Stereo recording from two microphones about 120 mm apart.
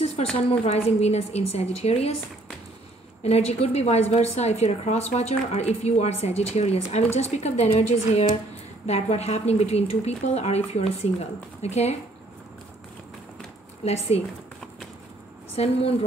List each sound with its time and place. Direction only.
0.0 s a woman's voice: 60° left (ahead or behind)
3.2 s a woman's voice: 60° left (ahead or behind)
8.8 s a woman's voice: 65° left (ahead or behind)
13.8 s a woman's voice: 60° left (ahead or behind)
15.5 s a woman's voice: 55° left (ahead or behind)